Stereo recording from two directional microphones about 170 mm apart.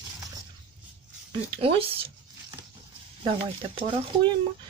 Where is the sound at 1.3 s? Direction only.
35° right (ahead or behind).